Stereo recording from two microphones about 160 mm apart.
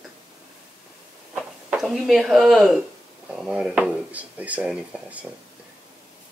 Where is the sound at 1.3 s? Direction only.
5° right (ahead or behind).